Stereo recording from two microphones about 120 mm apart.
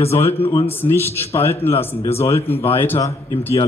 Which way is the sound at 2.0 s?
60° left (ahead or behind).